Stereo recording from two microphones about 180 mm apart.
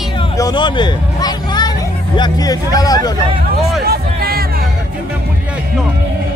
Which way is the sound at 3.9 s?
55° right (ahead or behind).